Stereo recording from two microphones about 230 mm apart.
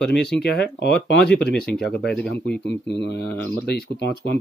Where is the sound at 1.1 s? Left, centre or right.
Left.